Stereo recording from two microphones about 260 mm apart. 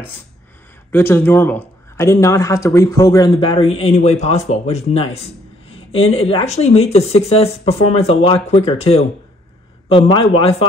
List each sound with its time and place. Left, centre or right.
0.9 s speech: centre